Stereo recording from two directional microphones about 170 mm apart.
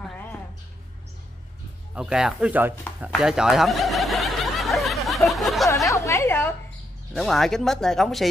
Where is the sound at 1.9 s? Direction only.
5° right (ahead or behind).